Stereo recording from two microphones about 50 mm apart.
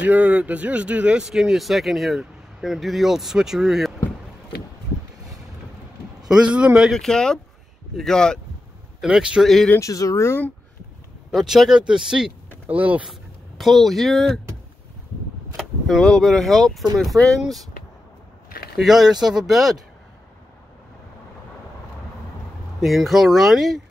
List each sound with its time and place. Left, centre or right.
0.0 s speech: right
1.2 s speech: centre
6.2 s a man's voice: centre
7.1 s speech: centre
9.0 s speech: centre
9.4 s speech: centre
9.8 s speech: left
11.3 s speech: centre
12.6 s speech: right
13.6 s speech: centre
16.0 s speech: centre
18.8 s speech: centre
22.8 s speech: centre